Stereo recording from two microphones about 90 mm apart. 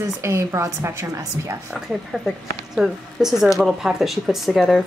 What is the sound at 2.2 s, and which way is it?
Speech, 5° right (ahead or behind).